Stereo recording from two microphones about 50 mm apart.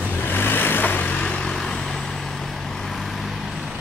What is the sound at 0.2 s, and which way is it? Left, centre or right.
Vehicle, left.